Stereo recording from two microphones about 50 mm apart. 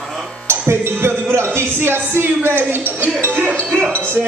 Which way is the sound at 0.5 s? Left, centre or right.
Right.